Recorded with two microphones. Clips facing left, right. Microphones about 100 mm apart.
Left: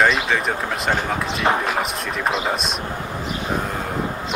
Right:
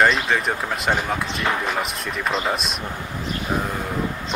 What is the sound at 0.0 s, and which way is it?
Speech, centre (ahead or behind).